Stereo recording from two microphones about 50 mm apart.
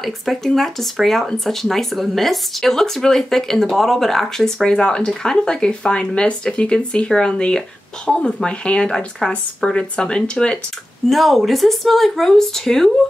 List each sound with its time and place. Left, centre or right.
0.0 s speech: centre
4.6 s speech: centre
11.1 s speech: centre